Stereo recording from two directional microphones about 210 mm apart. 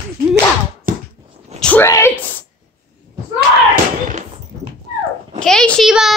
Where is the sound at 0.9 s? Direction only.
40° right (ahead or behind).